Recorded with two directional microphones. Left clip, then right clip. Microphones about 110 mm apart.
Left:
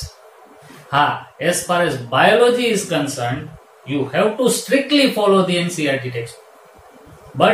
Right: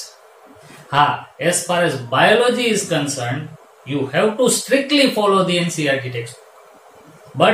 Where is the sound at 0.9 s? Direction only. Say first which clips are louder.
Right 1 dB; 45° right (ahead or behind).